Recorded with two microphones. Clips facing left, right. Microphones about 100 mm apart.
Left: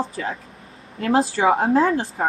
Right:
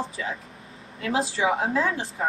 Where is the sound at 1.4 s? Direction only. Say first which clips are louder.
Left 6 dB; 35° left (ahead or behind).